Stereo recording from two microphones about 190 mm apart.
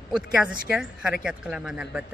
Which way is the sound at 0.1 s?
5° right (ahead or behind).